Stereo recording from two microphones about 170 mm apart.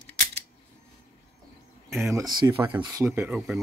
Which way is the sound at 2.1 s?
20° right (ahead or behind).